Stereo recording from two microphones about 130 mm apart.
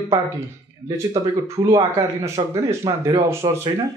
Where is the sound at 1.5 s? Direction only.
25° right (ahead or behind).